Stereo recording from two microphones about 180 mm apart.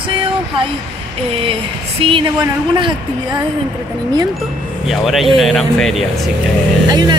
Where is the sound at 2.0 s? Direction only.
30° right (ahead or behind).